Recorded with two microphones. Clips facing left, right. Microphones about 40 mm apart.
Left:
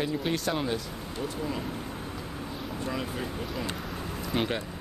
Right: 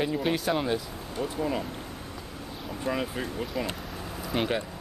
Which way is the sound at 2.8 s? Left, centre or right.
Centre.